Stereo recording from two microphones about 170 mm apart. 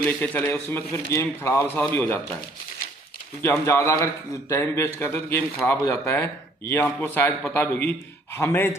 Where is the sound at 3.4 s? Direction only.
15° left (ahead or behind).